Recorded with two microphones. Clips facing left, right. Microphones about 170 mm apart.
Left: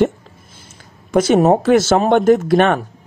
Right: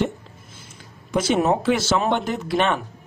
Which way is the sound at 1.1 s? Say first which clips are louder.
Left 7 dB; 45° left (ahead or behind).